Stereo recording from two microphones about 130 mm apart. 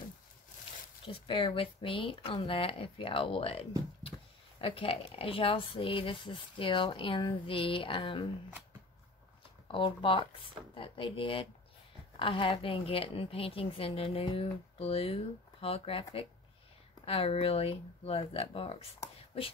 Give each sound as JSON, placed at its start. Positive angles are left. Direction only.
{"t": 1.0, "sound": "a woman's voice", "side_deg": 40}
{"t": 9.7, "sound": "a woman's voice", "side_deg": 40}